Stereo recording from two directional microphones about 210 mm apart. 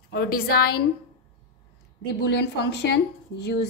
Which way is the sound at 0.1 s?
45° left (ahead or behind).